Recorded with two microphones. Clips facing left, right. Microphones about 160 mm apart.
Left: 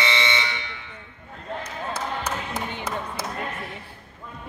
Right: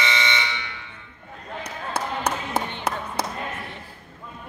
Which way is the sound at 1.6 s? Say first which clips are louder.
Right 3 dB; 70° right (ahead or behind).